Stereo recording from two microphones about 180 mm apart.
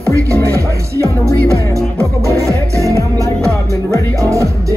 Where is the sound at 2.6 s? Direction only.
15° right (ahead or behind).